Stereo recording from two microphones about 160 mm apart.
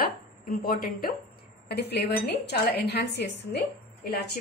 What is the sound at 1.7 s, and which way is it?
A woman's voice, 90° left.